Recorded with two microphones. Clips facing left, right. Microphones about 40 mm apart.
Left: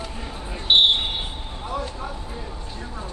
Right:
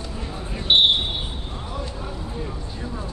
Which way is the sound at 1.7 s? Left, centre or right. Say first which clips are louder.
Left 5 dB; centre.